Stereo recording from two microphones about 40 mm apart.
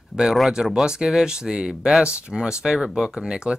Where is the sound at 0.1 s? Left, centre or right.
Centre.